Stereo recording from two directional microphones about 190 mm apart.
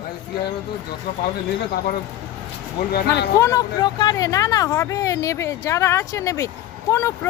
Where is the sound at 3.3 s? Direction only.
20° left (ahead or behind).